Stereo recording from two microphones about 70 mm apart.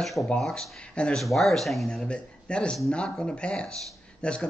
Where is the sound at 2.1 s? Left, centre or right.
Centre.